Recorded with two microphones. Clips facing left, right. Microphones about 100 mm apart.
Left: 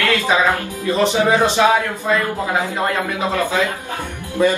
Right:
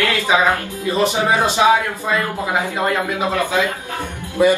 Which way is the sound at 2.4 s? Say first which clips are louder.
Even; 20° right (ahead or behind).